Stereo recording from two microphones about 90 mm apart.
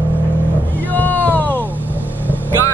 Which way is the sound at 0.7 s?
20° left (ahead or behind).